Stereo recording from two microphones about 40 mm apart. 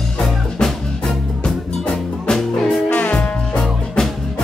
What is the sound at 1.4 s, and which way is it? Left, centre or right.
Music, centre.